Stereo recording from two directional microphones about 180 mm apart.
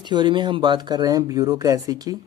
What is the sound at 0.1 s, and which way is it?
Speech, 25° right (ahead or behind).